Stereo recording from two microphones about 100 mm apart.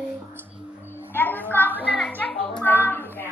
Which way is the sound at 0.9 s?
20° left (ahead or behind).